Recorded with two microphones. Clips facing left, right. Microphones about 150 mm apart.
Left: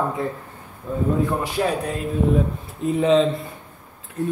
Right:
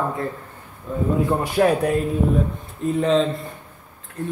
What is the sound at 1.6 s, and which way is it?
Speech, 45° right (ahead or behind).